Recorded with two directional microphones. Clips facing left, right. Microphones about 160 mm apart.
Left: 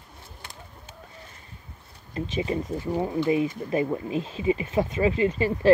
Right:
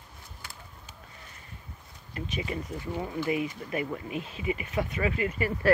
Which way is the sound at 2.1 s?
25° left (ahead or behind).